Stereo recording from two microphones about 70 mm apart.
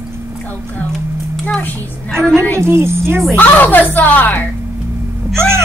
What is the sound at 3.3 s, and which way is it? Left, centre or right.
A woman's voice, left.